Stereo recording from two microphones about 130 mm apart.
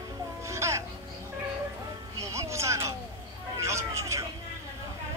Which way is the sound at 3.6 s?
20° right (ahead or behind).